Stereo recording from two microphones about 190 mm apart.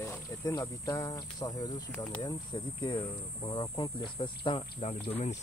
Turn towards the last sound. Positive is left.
turn(degrees=35)  # may be behind; listen again after turning